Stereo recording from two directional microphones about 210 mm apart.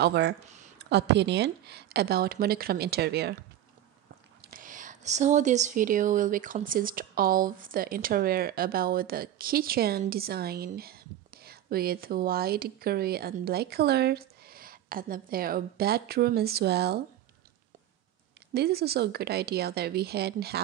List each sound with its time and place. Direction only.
0.0 s a woman's voice: 55° right (ahead or behind)
4.4 s a woman's voice: 40° right (ahead or behind)
18.5 s a woman's voice: 50° right (ahead or behind)